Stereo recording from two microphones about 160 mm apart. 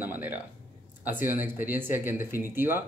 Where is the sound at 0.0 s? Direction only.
10° right (ahead or behind).